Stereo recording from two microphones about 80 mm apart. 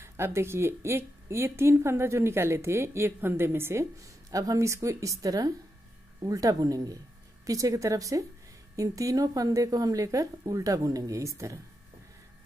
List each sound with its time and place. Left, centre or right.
0.0 s a woman's voice: right